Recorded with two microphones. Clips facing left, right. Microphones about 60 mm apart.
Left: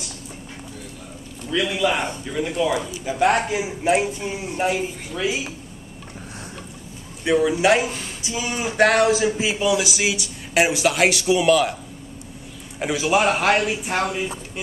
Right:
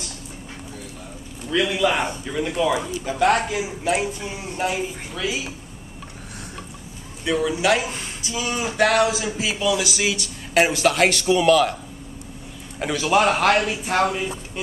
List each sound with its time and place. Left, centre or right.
1.5 s a man's voice: centre
2.9 s speech: centre
7.2 s a man's voice: left
12.7 s speech: centre